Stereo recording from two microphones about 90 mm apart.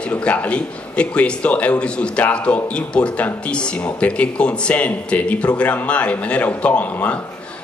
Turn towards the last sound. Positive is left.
turn(degrees=15)  # may be behind; listen again after turning